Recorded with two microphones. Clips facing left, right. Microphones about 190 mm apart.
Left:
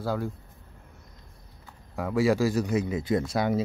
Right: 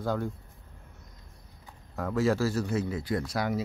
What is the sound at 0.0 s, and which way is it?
Speech, 5° left (ahead or behind).